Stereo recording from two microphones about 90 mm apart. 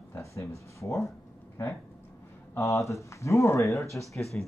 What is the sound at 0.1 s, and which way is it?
Speech, 35° left (ahead or behind).